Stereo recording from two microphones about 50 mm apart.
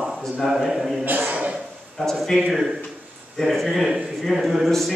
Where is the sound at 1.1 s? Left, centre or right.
Right.